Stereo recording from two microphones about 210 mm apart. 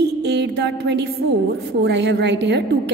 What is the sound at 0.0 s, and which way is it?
Music, 50° right (ahead or behind).